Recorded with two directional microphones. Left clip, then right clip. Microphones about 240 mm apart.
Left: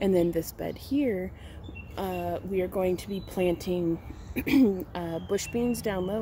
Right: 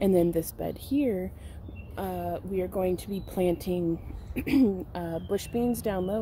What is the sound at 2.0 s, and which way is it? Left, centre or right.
Speech, centre.